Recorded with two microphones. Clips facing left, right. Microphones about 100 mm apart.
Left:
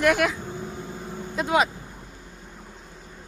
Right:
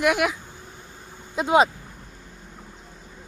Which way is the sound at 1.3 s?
20° right (ahead or behind).